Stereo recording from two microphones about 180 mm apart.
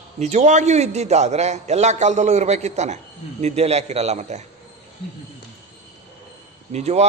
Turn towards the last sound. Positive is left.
turn(degrees=-35)  # may be behind; listen again after turning